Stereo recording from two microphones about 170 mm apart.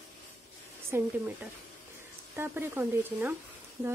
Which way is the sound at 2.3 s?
15° right (ahead or behind).